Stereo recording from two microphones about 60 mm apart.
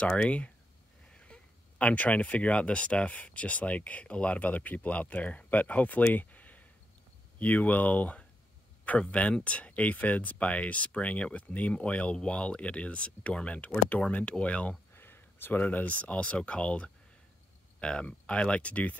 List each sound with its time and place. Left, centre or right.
0.0 s speech: centre
15.0 s a sound: left
15.6 s speech: left